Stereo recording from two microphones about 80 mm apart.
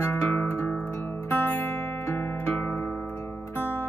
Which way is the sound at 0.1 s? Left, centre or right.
Left.